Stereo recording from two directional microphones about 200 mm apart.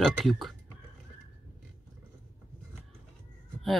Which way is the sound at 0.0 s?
Centre (ahead or behind).